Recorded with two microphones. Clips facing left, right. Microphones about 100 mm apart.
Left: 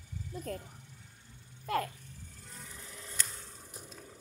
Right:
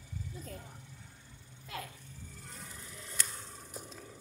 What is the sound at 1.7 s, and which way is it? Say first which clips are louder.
Speech: left 11 dB; 50° left (ahead or behind).